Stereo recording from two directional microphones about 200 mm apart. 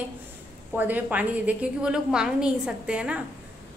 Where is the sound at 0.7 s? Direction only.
10° right (ahead or behind).